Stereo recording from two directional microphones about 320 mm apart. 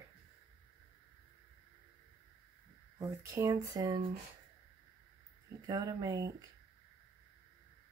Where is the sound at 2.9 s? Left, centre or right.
Centre.